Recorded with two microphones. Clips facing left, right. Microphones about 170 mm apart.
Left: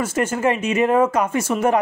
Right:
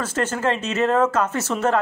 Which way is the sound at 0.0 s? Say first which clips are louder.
Left 3 dB; 10° left (ahead or behind).